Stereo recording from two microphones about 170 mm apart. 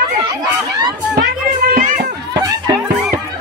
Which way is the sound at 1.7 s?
55° right (ahead or behind).